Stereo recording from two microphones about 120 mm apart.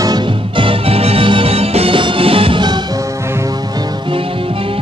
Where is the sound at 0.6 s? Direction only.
50° right (ahead or behind).